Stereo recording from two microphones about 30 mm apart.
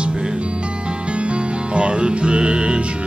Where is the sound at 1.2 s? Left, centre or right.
Right.